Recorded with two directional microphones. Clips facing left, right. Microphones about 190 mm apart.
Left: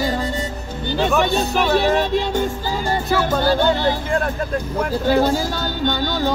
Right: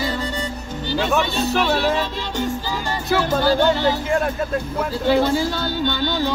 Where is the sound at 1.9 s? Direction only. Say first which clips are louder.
Left 5 dB; 50° left (ahead or behind).